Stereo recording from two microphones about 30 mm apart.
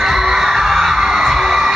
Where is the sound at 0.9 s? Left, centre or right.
Right.